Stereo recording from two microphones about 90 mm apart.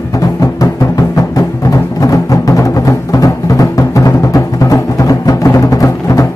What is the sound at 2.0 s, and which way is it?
Music, 40° left (ahead or behind).